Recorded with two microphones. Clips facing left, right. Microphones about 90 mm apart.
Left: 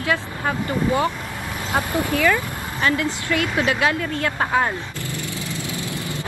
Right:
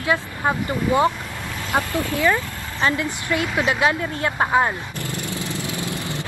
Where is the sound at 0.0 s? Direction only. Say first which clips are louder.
Right 1 dB; 20° right (ahead or behind).